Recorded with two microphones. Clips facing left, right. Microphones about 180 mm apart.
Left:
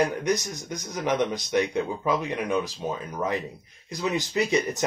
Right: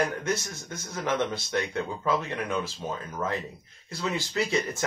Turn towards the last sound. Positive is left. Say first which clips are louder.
# left 3 dB
turn(degrees=15)  # may be behind; listen again after turning